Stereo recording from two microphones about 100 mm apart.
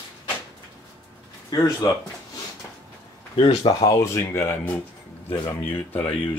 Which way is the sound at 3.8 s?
30° left (ahead or behind).